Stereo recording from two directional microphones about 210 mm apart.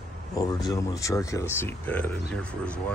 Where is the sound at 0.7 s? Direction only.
15° left (ahead or behind).